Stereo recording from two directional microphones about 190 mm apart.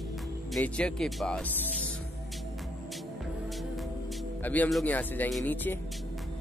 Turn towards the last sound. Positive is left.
turn(degrees=10)  # may be behind; listen again after turning